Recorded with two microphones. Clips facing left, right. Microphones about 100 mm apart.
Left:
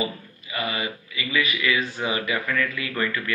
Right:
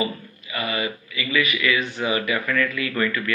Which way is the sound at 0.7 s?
25° left (ahead or behind).